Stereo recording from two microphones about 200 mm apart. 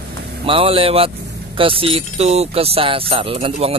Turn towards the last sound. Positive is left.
turn(degrees=-30)  # may be behind; listen again after turning